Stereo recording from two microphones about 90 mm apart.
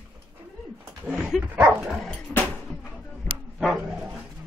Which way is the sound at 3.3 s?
15° left (ahead or behind).